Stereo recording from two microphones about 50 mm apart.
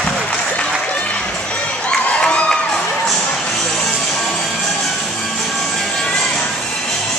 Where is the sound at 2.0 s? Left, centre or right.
Left.